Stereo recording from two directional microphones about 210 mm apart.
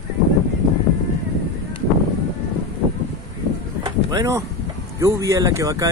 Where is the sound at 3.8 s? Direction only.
15° right (ahead or behind).